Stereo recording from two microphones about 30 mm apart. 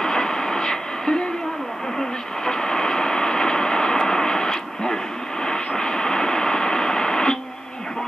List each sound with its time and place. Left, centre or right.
0.0 s vehicle: centre
2.0 s radio: left
5.4 s a sound: left